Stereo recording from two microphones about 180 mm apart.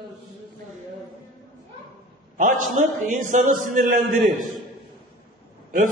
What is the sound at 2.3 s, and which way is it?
A man's voice, 50° right (ahead or behind).